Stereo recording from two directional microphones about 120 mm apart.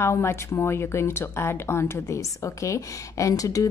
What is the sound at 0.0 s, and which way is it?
Speech, 25° left (ahead or behind).